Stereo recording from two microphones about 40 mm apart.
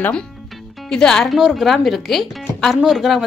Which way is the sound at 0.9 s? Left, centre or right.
Centre.